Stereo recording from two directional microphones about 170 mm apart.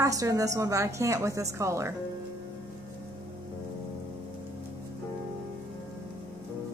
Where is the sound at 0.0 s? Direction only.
20° right (ahead or behind).